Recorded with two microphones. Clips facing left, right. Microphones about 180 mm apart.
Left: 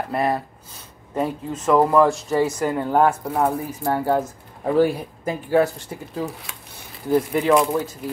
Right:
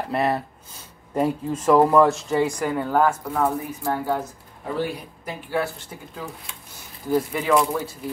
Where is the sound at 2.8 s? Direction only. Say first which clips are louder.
Left 2 dB; 20° left (ahead or behind).